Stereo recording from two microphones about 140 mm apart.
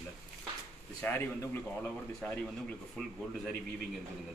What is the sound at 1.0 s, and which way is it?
Speech, 15° left (ahead or behind).